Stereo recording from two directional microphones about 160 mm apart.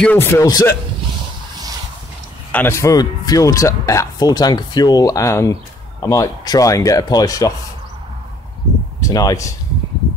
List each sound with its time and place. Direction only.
0.0 s a man's voice: 10° left (ahead or behind)
2.5 s speech: 15° left (ahead or behind)
9.0 s speech: 20° left (ahead or behind)